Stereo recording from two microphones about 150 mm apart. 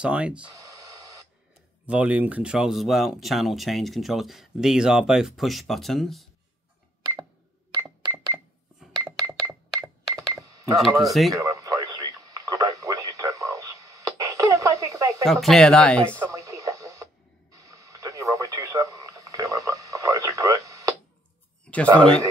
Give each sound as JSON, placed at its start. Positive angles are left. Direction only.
{"t": 0.0, "sound": "speech", "side_deg": -5}
{"t": 0.5, "sound": "a sound", "side_deg": -25}
{"t": 1.9, "sound": "speech", "side_deg": -10}
{"t": 8.7, "sound": "dishes", "side_deg": 0}
{"t": 9.0, "sound": "cash register", "side_deg": -10}
{"t": 10.3, "sound": "a sound", "side_deg": -20}
{"t": 10.8, "sound": "speech", "side_deg": 0}
{"t": 11.3, "sound": "radio", "side_deg": -20}
{"t": 15.2, "sound": "speech", "side_deg": 0}
{"t": 16.2, "sound": "radio", "side_deg": -20}
{"t": 21.9, "sound": "speech", "side_deg": 5}